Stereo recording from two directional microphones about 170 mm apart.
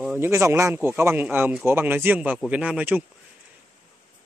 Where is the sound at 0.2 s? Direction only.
15° right (ahead or behind).